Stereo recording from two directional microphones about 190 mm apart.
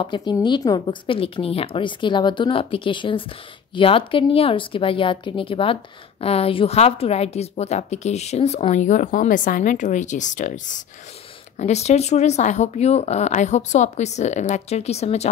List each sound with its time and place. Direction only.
0.0 s a woman's voice: 25° left (ahead or behind)